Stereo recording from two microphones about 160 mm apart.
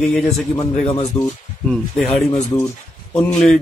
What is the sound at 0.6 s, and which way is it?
Speech, 30° left (ahead or behind).